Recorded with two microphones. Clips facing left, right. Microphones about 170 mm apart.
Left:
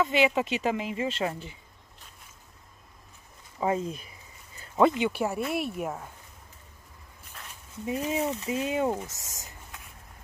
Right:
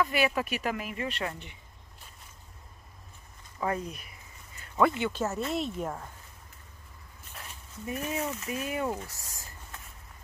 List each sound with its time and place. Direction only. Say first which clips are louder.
0.0 s speech: left 3 dB; 20° left (ahead or behind)
3.5 s speech: left 4 dB; 20° left (ahead or behind)
7.8 s speech: left 4 dB; 20° left (ahead or behind)